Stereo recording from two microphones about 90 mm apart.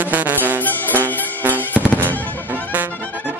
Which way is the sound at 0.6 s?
20° left (ahead or behind).